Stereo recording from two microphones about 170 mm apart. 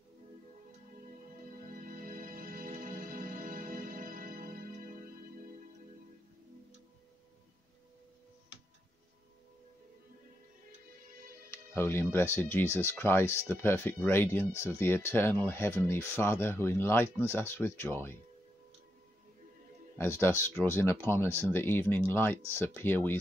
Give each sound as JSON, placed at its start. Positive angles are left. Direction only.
{"t": 1.7, "sound": "music", "side_deg": -50}
{"t": 11.5, "sound": "speech", "side_deg": 15}
{"t": 20.0, "sound": "speech", "side_deg": 15}